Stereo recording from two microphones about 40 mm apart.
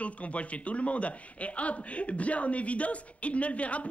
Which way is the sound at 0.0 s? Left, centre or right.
Left.